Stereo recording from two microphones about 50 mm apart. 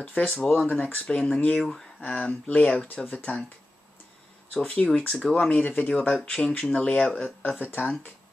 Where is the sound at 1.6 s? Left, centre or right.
Centre.